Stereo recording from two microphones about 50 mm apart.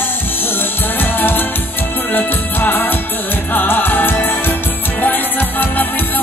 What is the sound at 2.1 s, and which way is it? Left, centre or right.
Music, left.